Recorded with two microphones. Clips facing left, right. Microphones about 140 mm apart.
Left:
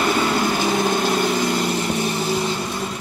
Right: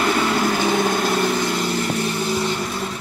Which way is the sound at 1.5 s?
25° left (ahead or behind).